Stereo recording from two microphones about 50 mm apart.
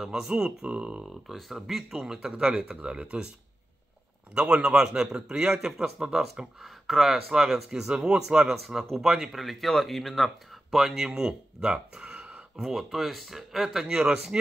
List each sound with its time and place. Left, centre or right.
0.0 s speech: centre
1.0 s speech: centre
4.4 s speech: centre
11.7 s a sound: right
12.5 s speech: centre